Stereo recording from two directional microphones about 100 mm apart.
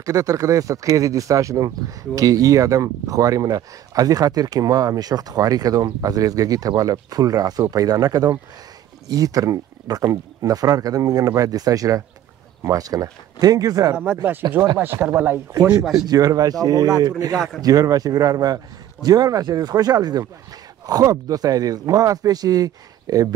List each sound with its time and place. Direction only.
0.0 s speech: 35° right (ahead or behind)
14.8 s speech: 20° right (ahead or behind)
15.8 s speech: 5° right (ahead or behind)
16.1 s speech: 40° right (ahead or behind)